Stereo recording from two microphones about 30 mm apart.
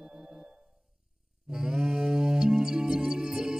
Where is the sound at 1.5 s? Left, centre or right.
Right.